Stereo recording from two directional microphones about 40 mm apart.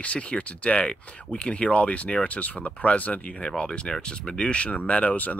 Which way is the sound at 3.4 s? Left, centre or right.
Left.